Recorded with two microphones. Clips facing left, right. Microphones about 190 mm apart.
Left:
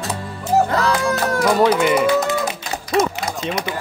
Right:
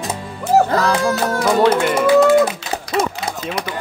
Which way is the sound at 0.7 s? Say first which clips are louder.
Right 2 dB; 25° right (ahead or behind).